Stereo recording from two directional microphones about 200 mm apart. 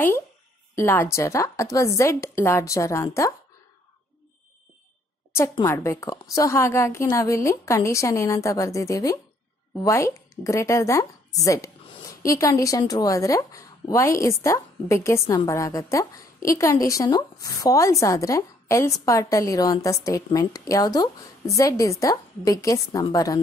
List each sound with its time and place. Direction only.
0.7 s a woman's voice: 10° left (ahead or behind)
5.3 s a woman's voice: 15° left (ahead or behind)